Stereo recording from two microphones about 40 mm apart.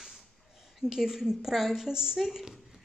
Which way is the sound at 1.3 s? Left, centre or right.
Centre.